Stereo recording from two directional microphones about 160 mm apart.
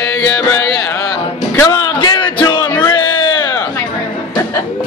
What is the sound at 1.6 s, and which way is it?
Music, 25° left (ahead or behind).